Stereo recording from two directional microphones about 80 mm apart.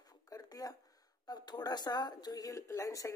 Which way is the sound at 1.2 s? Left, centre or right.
Left.